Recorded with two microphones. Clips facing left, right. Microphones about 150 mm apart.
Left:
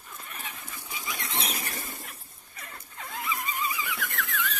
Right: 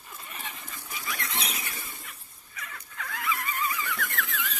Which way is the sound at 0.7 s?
15° left (ahead or behind).